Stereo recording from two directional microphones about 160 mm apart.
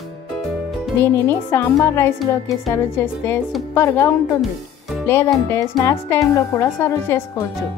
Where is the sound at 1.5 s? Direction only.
15° left (ahead or behind).